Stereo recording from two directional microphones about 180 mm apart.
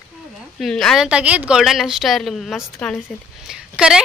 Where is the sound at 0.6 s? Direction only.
Centre (ahead or behind).